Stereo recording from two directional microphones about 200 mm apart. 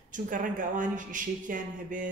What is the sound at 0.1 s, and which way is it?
Speech, 40° right (ahead or behind).